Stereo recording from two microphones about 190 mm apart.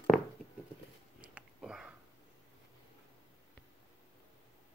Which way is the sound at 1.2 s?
5° right (ahead or behind).